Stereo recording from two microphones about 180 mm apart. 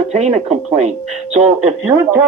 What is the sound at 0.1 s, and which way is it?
Speech, 40° right (ahead or behind).